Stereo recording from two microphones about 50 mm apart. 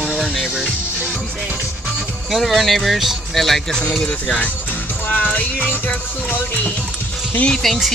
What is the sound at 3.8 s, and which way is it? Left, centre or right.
Speech, left.